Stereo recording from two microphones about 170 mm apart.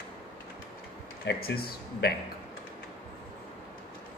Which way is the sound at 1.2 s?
75° left (ahead or behind).